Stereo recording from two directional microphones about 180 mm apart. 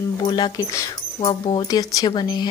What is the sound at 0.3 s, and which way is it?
Speech, 25° left (ahead or behind).